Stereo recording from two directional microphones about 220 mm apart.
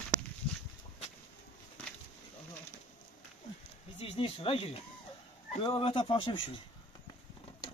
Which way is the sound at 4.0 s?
25° left (ahead or behind).